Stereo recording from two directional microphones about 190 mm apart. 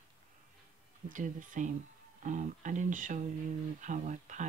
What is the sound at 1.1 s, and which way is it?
Speech, 45° right (ahead or behind).